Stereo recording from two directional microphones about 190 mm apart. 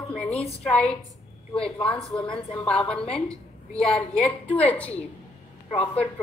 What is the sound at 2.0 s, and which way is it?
A woman's voice, 5° left (ahead or behind).